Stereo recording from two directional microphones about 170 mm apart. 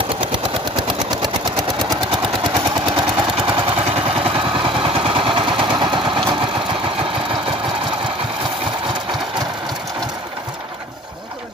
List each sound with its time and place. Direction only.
1.9 s vehicle: 25° right (ahead or behind)